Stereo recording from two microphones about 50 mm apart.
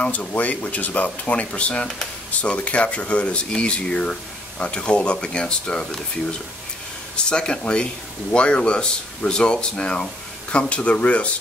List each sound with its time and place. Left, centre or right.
0.0 s speech: left
7.2 s speech: centre